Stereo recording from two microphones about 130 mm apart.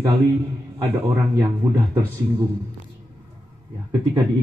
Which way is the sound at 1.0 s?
20° right (ahead or behind).